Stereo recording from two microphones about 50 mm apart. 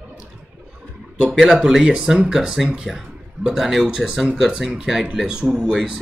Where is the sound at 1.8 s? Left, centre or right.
Centre.